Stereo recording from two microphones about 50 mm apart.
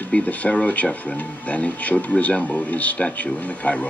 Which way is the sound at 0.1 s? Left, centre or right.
Left.